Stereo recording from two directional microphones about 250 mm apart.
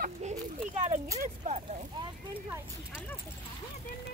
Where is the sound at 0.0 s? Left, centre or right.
Right.